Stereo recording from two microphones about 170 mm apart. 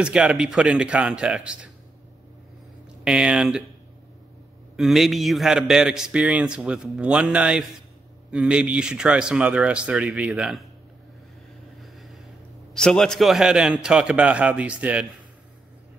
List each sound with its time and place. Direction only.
0.0 s a man's voice: 5° right (ahead or behind)
3.0 s a man's voice: 5° right (ahead or behind)
4.7 s a man's voice: centre (ahead or behind)
11.8 s vehicle: centre (ahead or behind)
12.7 s a man's voice: 5° left (ahead or behind)